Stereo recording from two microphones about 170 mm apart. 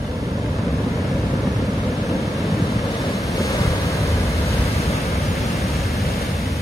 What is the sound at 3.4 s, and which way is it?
Vehicle, 20° left (ahead or behind).